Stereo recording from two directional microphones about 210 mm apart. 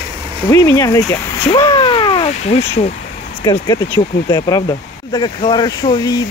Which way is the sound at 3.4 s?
15° left (ahead or behind).